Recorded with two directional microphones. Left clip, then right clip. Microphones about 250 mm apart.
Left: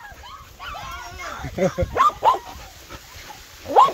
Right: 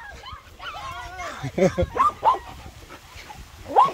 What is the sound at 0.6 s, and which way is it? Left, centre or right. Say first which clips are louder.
Dog: left 1 dB; centre.